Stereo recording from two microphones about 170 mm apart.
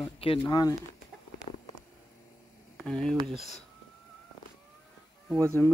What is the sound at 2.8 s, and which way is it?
Speech, 5° left (ahead or behind).